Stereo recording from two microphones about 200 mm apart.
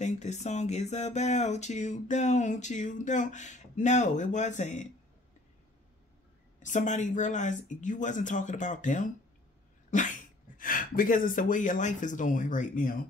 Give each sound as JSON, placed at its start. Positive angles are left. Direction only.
{"t": 0.0, "sound": "speech", "side_deg": 35}
{"t": 6.6, "sound": "speech", "side_deg": 40}
{"t": 9.8, "sound": "dog", "side_deg": 40}
{"t": 10.6, "sound": "speech", "side_deg": 45}